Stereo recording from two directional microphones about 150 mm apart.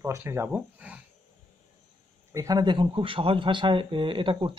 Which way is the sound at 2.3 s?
20° right (ahead or behind).